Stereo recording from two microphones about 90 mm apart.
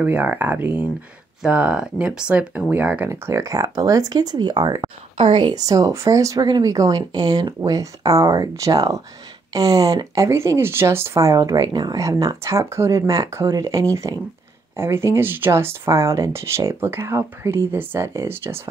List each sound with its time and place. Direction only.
0.0 s speech: 20° right (ahead or behind)
1.4 s speech: 10° right (ahead or behind)
3.1 s speech: 30° right (ahead or behind)
3.4 s speech: 45° right (ahead or behind)
5.1 s speech: 65° right (ahead or behind)
5.7 s speech: 40° right (ahead or behind)